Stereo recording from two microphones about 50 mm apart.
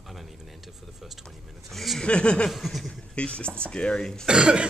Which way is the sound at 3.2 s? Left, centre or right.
Left.